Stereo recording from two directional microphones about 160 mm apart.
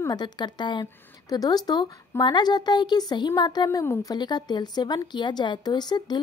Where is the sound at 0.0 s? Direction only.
25° left (ahead or behind).